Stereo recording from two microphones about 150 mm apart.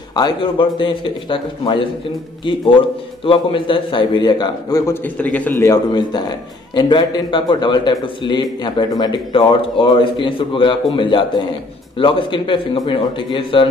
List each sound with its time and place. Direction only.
0.1 s a man's voice: 30° left (ahead or behind)
3.3 s a man's voice: 35° left (ahead or behind)
5.0 s a man's voice: 10° left (ahead or behind)
5.6 s a man's voice: 25° left (ahead or behind)